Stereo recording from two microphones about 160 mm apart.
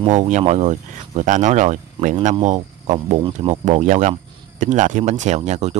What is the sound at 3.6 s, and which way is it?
Speech, 50° right (ahead or behind).